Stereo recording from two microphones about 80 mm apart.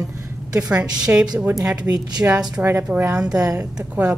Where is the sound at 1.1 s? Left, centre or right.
Right.